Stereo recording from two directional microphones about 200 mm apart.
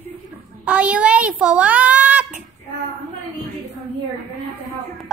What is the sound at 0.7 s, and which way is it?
A child's voice, 5° right (ahead or behind).